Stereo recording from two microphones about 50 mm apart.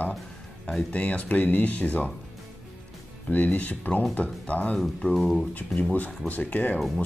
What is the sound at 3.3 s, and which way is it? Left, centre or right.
Speech, left.